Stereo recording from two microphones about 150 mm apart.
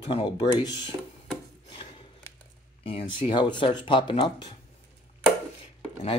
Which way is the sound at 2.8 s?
40° left (ahead or behind).